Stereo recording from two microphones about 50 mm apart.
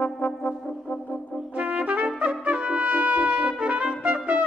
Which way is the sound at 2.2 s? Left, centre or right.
Right.